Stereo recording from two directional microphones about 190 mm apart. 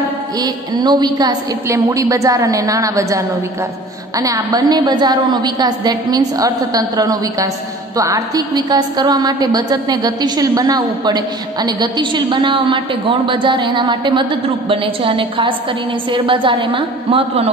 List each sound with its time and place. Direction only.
0.4 s a woman's voice: 20° right (ahead or behind)
4.2 s a woman's voice: 20° right (ahead or behind)